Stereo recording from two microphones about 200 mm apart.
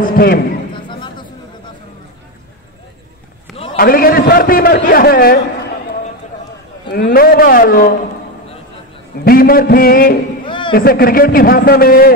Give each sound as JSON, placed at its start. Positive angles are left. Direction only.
{"t": 0.0, "sound": "a man's voice", "side_deg": 50}
{"t": 0.7, "sound": "a sound", "side_deg": 25}
{"t": 3.7, "sound": "a man's voice", "side_deg": 45}
{"t": 6.9, "sound": "a man's voice", "side_deg": 50}
{"t": 9.2, "sound": "a man's voice", "side_deg": 50}
{"t": 10.4, "sound": "a sound", "side_deg": 25}
{"t": 10.7, "sound": "a man's voice", "side_deg": 45}